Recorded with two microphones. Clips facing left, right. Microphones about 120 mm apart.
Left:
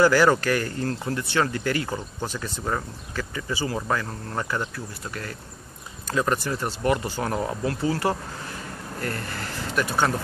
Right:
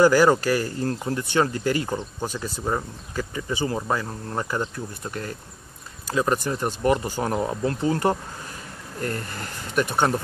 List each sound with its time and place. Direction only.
0.0 s speech: 15° right (ahead or behind)